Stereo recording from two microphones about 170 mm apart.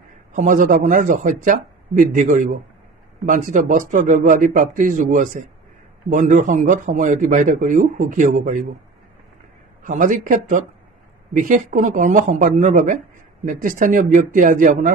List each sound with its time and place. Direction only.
0.3 s a man's voice: 45° right (ahead or behind)
9.8 s a man's voice: 50° right (ahead or behind)